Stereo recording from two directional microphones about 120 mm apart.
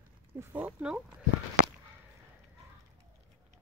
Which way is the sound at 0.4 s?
15° right (ahead or behind).